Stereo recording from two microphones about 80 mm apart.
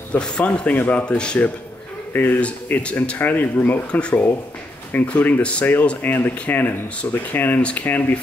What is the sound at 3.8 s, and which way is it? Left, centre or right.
Speech, centre.